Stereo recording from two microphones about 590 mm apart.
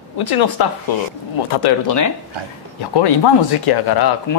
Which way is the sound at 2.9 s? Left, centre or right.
Left.